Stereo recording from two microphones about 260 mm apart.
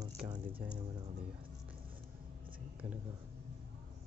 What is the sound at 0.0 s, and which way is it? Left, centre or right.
Music, centre.